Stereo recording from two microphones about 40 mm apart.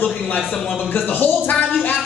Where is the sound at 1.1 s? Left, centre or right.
Left.